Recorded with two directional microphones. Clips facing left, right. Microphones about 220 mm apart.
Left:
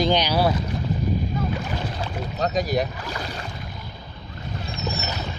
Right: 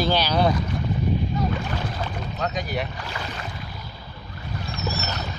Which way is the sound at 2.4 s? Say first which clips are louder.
Left 5 dB; 35° left (ahead or behind).